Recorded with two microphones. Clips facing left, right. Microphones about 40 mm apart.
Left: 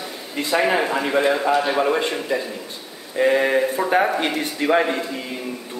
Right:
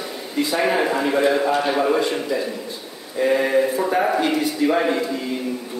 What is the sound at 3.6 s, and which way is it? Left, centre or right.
Mantra, centre.